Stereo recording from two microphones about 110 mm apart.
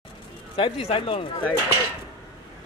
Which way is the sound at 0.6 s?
60° left (ahead or behind).